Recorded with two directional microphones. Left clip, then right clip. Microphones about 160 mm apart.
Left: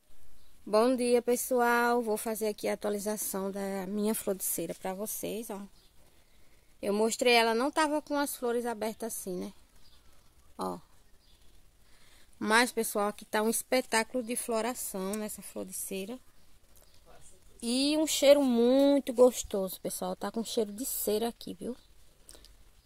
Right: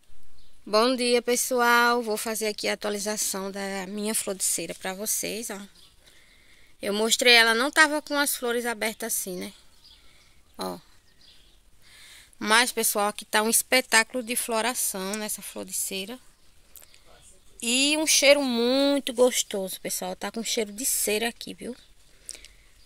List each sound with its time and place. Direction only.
0.7 s a woman's voice: centre (ahead or behind)
6.8 s a woman's voice: 5° left (ahead or behind)
12.4 s a woman's voice: 5° left (ahead or behind)
17.6 s speech: centre (ahead or behind)
20.1 s speech: 20° right (ahead or behind)
20.4 s speech: 10° left (ahead or behind)